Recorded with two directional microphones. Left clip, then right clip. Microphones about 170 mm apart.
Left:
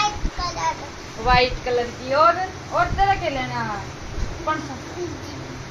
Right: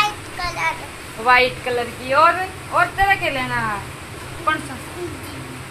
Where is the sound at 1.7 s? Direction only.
15° right (ahead or behind).